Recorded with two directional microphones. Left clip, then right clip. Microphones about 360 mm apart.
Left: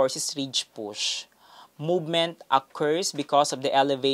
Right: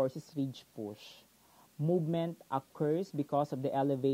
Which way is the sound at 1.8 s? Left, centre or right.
Left.